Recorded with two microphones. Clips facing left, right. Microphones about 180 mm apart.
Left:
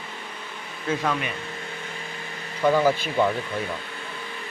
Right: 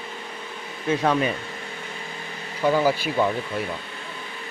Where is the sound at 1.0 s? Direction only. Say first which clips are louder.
Right 8 dB; 35° right (ahead or behind).